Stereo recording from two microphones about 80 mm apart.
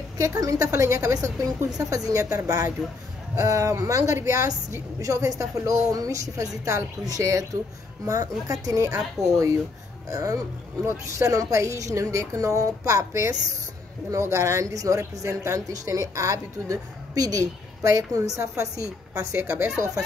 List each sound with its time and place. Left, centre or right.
0.2 s a woman's voice: right